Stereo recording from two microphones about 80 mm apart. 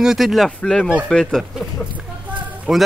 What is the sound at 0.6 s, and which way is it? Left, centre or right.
Speech, centre.